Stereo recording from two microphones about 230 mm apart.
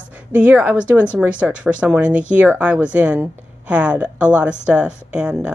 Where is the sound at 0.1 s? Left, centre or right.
Centre.